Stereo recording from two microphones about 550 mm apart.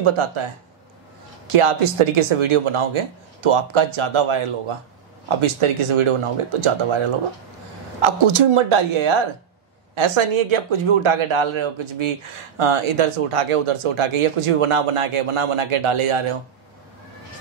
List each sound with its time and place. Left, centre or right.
0.0 s speech: right
1.5 s speech: right
8.0 s speech: right